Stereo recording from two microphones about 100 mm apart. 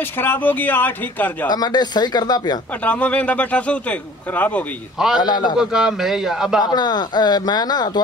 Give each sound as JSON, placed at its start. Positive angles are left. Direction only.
{"t": 0.2, "sound": "speech", "side_deg": 20}
{"t": 1.5, "sound": "speech", "side_deg": 45}
{"t": 2.8, "sound": "speech", "side_deg": 15}
{"t": 4.9, "sound": "a man's voice", "side_deg": -5}
{"t": 5.2, "sound": "speech", "side_deg": 45}
{"t": 5.6, "sound": "a man's voice", "side_deg": -5}
{"t": 6.6, "sound": "speech", "side_deg": 45}